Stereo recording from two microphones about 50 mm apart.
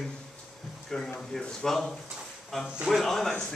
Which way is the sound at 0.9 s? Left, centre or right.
Centre.